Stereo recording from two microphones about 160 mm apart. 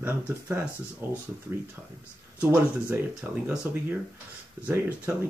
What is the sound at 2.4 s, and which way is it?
Speech, 10° right (ahead or behind).